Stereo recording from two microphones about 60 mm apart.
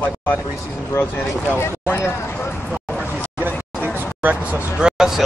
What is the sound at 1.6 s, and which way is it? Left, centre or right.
Speech, left.